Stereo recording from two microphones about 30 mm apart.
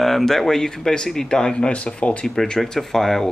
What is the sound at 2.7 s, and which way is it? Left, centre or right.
Speech, centre.